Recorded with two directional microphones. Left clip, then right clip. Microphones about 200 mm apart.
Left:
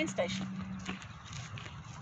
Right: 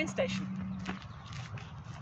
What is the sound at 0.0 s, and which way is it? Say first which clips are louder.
Speech: right 1 dB; 10° right (ahead or behind).